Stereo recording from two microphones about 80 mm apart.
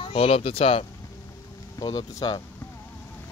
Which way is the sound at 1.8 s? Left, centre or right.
Left.